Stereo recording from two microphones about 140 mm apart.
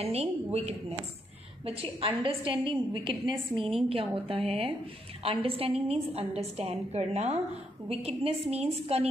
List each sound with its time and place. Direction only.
0.0 s a woman's voice: 45° right (ahead or behind)